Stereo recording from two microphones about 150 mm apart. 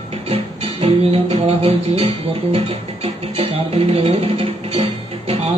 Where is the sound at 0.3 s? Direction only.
40° right (ahead or behind).